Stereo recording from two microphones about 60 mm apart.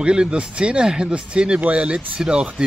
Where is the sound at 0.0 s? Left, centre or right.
Centre.